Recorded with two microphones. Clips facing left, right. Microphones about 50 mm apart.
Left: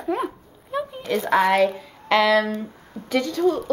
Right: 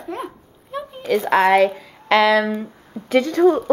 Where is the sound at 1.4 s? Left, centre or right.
Right.